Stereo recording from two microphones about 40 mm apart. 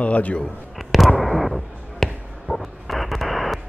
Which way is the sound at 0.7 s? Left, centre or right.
Centre.